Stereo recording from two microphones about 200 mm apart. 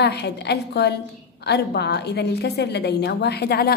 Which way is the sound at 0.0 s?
55° left (ahead or behind).